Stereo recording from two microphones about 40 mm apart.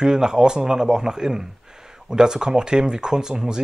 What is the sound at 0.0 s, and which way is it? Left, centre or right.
Speech, centre.